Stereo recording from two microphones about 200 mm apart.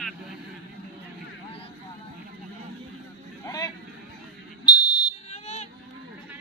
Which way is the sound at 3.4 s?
20° left (ahead or behind).